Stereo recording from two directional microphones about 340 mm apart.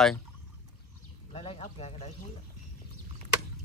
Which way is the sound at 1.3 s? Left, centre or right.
Centre.